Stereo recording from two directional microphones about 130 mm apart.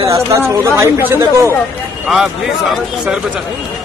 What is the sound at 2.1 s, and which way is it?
A man's voice, 5° right (ahead or behind).